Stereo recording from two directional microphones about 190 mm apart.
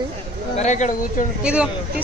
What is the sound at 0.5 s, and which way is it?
Speech, 35° left (ahead or behind).